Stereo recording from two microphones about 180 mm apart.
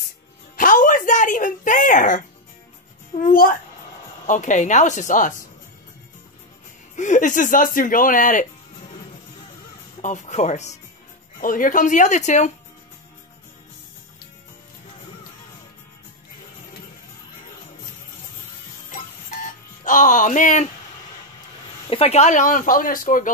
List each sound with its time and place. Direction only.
0.6 s a sound: 45° left (ahead or behind)
3.2 s speech: 50° left (ahead or behind)
7.0 s speech: 45° left (ahead or behind)
10.0 s speech: 40° left (ahead or behind)
18.9 s music: 45° left (ahead or behind)
21.8 s speech: 35° left (ahead or behind)